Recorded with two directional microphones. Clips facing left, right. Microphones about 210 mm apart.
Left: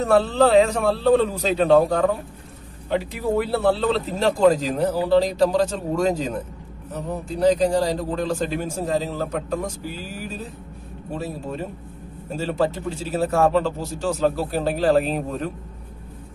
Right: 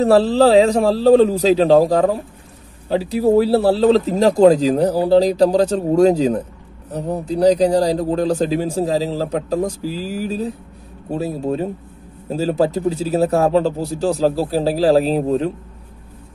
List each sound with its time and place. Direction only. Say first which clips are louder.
0.0 s speech: right 5 dB; 35° right (ahead or behind)